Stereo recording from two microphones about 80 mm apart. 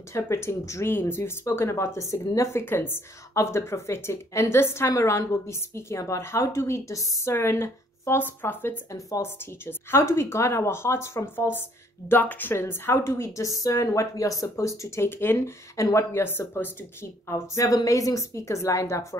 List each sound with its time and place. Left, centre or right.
0.1 s a woman's voice: left
2.6 s a woman's voice: left
3.3 s a woman's voice: left
8.9 s speech: left
9.7 s a woman's voice: left
15.0 s a woman's voice: left
17.3 s a woman's voice: left